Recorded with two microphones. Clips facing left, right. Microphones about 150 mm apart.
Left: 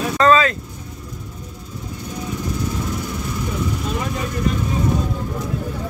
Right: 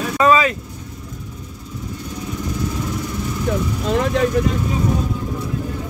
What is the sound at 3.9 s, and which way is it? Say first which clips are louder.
Speech: right 7 dB; 75° right (ahead or behind).